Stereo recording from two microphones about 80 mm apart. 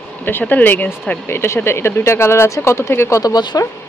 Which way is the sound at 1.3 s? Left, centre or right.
Left.